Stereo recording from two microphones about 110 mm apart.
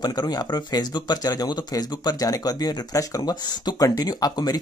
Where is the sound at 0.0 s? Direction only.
40° left (ahead or behind).